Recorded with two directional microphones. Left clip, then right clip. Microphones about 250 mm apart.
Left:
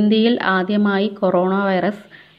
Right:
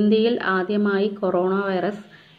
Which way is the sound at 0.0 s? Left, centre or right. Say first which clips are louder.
Left 2 dB; left.